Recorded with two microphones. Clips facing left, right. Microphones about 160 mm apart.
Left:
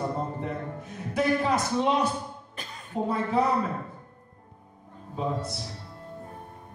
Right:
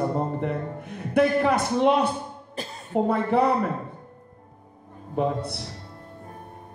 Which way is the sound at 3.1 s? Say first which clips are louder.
Right 3 dB; 60° right (ahead or behind).